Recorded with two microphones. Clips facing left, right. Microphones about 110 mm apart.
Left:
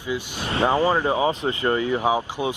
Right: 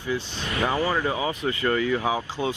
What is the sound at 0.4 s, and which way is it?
Speech, 30° left (ahead or behind).